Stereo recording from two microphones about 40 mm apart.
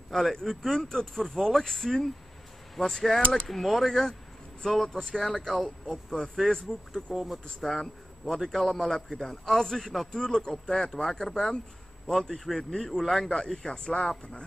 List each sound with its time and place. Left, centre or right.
0.1 s a man's voice: centre; by 14.4 s left